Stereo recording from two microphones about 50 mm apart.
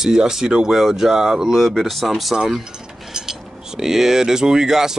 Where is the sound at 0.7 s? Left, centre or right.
Centre.